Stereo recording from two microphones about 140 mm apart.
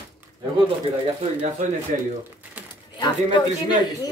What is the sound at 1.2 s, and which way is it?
Speech, 45° right (ahead or behind).